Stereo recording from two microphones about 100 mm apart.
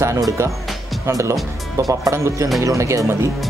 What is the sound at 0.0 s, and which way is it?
Speech, 30° right (ahead or behind).